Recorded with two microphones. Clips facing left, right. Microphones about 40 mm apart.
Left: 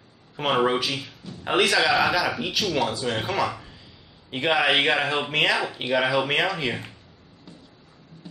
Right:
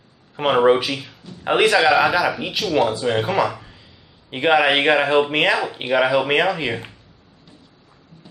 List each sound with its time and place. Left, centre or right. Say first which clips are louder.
0.4 s a man's voice: right 6 dB; centre